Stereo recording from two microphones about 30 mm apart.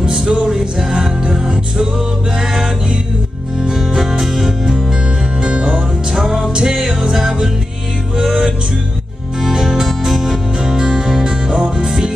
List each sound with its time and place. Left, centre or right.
0.0 s music: right
0.5 s music: centre
0.9 s music: right
3.7 s music: centre
5.4 s music: right
8.2 s music: right
9.6 s music: right
9.8 s music: centre
10.6 s music: right
11.5 s music: right